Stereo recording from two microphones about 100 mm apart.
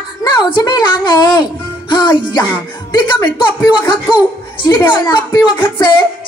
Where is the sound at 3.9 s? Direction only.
50° left (ahead or behind).